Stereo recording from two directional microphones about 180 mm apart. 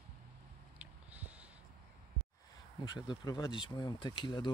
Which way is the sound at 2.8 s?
25° left (ahead or behind).